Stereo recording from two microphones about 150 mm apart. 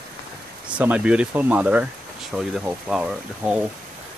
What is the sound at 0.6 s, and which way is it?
Speech, 10° right (ahead or behind).